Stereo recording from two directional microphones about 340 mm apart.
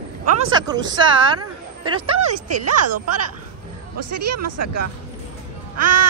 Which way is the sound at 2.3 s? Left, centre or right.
Right.